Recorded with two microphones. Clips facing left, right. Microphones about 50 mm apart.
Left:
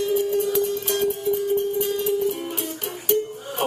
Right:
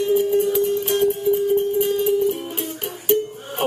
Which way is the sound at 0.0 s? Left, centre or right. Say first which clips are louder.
Right 4 dB; right.